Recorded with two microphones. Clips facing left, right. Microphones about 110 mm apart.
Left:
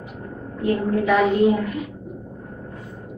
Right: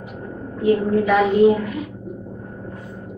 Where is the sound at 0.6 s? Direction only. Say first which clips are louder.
Right 4 dB; centre (ahead or behind).